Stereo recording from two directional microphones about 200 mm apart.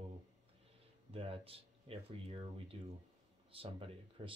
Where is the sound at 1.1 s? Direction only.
25° right (ahead or behind).